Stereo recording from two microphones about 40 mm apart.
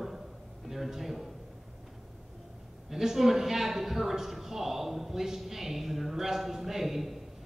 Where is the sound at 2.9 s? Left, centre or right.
Centre.